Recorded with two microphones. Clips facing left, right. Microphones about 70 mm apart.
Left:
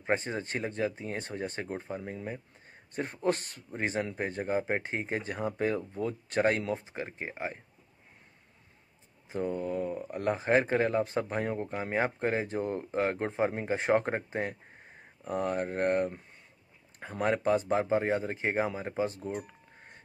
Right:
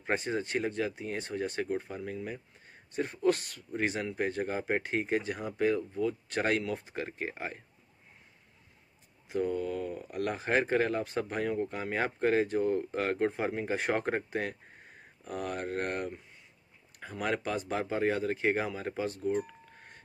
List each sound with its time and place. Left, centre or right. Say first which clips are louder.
0.0 s speech: left 1 dB; left
9.3 s speech: right 1 dB; left
19.3 s a sound: right 5 dB; centre